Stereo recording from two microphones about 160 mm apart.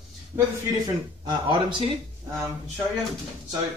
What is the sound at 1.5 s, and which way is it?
Speech, 30° right (ahead or behind).